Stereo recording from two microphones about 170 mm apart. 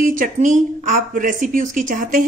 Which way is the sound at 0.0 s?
50° right (ahead or behind).